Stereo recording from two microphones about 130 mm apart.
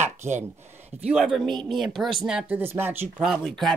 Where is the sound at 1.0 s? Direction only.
5° right (ahead or behind).